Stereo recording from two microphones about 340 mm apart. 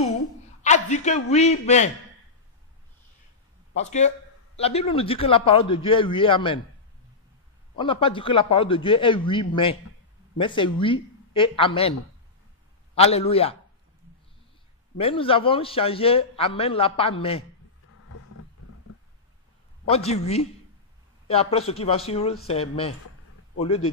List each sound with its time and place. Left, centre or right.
0.0 s a sound: left
0.6 s a man's voice: left
3.7 s a man's voice: centre
7.7 s a man's voice: centre
12.9 s a man's voice: centre
15.0 s a man's voice: centre
20.1 s a man's voice: centre